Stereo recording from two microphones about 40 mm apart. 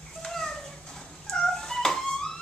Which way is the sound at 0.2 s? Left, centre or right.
Centre.